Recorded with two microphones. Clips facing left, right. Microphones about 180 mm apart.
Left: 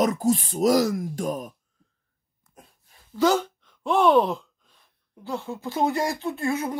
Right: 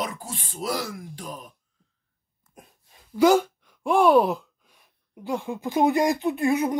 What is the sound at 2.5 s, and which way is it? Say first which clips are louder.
Speech: right 2 dB; 15° right (ahead or behind).